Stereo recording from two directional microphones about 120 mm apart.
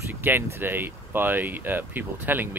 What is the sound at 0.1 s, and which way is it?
Speech, 15° right (ahead or behind).